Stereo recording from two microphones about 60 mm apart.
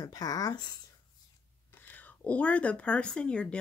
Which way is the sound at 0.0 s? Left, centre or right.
Left.